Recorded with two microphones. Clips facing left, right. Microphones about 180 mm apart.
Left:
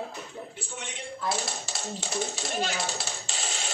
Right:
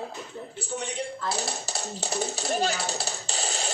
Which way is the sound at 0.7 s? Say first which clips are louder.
Right 9 dB; 40° right (ahead or behind).